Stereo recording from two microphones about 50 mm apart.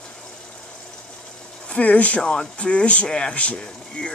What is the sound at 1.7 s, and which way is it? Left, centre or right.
Speech, left.